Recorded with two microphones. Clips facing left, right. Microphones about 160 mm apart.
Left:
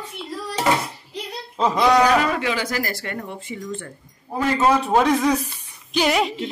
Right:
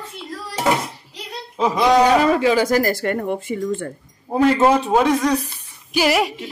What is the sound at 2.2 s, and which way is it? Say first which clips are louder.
Speech: right 7 dB; 35° right (ahead or behind).